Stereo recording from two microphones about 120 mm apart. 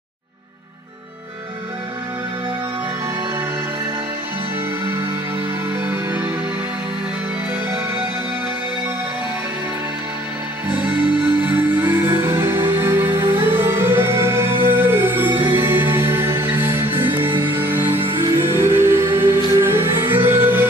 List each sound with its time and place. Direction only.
5.9 s music: 15° right (ahead or behind)
11.4 s music: 20° right (ahead or behind)
17.3 s music: 40° right (ahead or behind)
17.6 s music: 20° right (ahead or behind)
17.9 s music: 45° right (ahead or behind)
18.4 s music: 20° right (ahead or behind)